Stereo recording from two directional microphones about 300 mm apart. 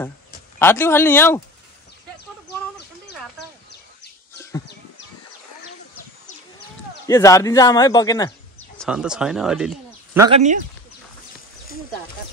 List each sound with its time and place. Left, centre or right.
0.6 s speech: centre
4.4 s a sound: centre
7.1 s speech: centre
10.2 s speech: right